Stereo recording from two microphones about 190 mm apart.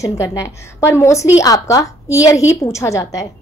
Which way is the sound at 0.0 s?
15° left (ahead or behind).